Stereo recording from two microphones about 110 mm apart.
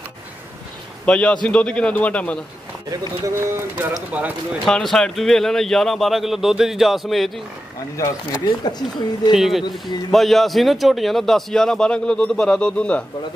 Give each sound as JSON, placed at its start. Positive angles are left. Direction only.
{"t": 1.0, "sound": "a man's voice", "side_deg": 10}
{"t": 2.9, "sound": "speech", "side_deg": -30}
{"t": 4.6, "sound": "a man's voice", "side_deg": 5}
{"t": 7.9, "sound": "speech", "side_deg": 30}
{"t": 9.3, "sound": "a man's voice", "side_deg": 0}